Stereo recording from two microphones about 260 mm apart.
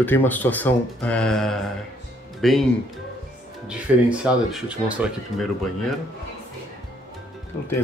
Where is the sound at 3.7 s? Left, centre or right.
Centre.